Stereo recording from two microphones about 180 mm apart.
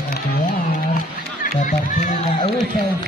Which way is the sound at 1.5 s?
45° left (ahead or behind).